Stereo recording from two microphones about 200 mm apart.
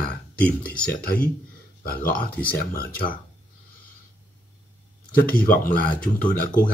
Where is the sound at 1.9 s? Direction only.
45° left (ahead or behind).